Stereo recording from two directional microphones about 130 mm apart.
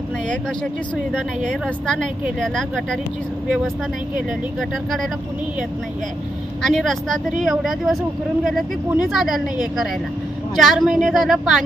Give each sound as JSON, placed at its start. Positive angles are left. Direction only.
{"t": 1.5, "sound": "speech", "side_deg": 5}
{"t": 6.6, "sound": "speech", "side_deg": 0}
{"t": 9.1, "sound": "speech", "side_deg": 0}